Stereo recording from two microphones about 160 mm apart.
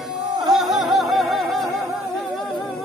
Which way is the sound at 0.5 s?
Centre (ahead or behind).